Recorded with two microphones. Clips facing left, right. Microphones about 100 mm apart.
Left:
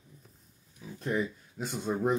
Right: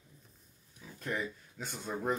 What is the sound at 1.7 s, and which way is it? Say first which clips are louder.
Speech: left 6 dB; 15° left (ahead or behind).